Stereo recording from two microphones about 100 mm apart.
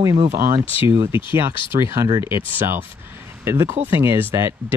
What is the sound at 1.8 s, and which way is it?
Speech, 25° right (ahead or behind).